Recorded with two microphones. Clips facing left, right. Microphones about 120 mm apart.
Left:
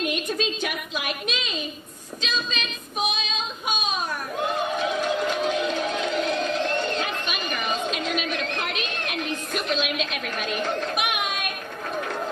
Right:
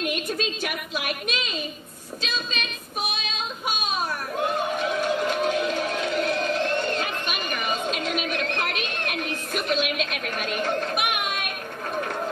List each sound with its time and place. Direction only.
0.0 s a woman's voice: 50° right (ahead or behind)
3.2 s female singing: 50° right (ahead or behind)
4.7 s music: 50° right (ahead or behind)